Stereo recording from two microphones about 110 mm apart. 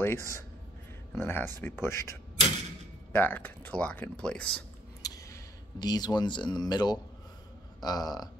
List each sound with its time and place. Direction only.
0.0 s a man's voice: 20° left (ahead or behind)
5.0 s speech: 30° left (ahead or behind)